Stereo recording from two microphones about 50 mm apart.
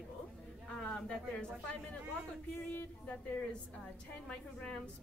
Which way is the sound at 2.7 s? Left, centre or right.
Left.